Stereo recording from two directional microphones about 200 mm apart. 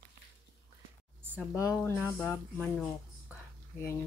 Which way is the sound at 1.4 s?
15° left (ahead or behind).